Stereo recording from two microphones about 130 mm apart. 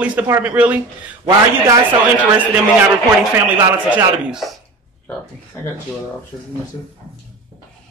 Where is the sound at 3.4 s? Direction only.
5° right (ahead or behind).